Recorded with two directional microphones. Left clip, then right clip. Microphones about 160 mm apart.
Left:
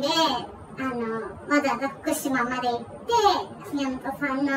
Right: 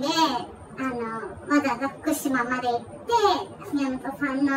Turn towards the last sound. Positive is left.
turn(degrees=-10)  # may be behind; listen again after turning